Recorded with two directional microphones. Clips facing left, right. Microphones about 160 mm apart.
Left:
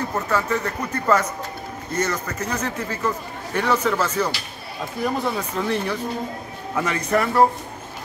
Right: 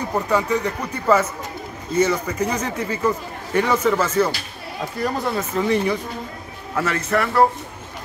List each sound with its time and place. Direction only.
0.1 s speech: 15° right (ahead or behind)
6.7 s speech: 15° left (ahead or behind)